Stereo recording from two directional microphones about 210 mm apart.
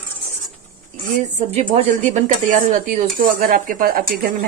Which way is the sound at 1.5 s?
30° right (ahead or behind).